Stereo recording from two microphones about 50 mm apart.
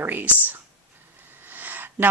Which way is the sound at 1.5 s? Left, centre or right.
Right.